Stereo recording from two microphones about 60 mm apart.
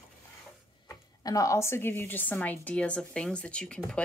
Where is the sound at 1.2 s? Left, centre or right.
Left.